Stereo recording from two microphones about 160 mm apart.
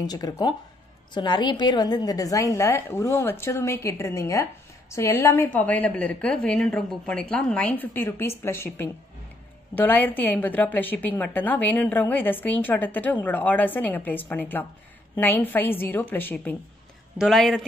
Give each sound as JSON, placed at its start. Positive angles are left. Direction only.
{"t": 0.0, "sound": "a woman's voice", "side_deg": 25}
{"t": 17.2, "sound": "speech", "side_deg": 0}